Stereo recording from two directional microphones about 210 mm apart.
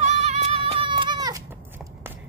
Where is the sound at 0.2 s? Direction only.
30° right (ahead or behind).